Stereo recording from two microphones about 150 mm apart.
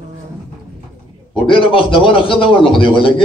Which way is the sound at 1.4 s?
35° left (ahead or behind).